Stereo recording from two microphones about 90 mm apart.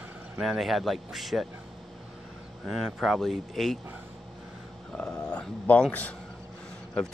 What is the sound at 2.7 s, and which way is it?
Speech, 5° right (ahead or behind).